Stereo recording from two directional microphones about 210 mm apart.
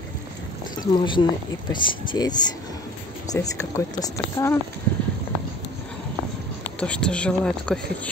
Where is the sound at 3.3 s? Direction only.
15° left (ahead or behind).